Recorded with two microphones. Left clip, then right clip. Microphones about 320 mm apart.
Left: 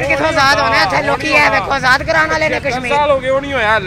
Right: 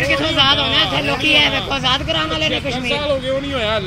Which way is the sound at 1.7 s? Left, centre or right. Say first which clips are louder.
Left 6 dB; left.